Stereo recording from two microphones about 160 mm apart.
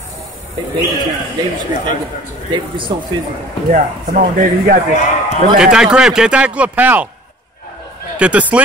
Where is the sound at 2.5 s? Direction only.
30° right (ahead or behind).